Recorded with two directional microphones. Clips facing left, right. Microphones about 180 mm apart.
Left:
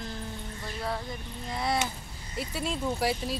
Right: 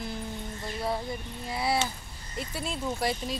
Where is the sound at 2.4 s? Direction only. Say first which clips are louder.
Left 2 dB; 5° left (ahead or behind).